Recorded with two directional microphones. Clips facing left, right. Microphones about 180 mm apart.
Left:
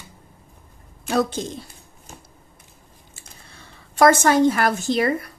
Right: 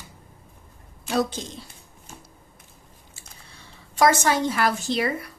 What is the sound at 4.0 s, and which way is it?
A woman's voice, 55° left (ahead or behind).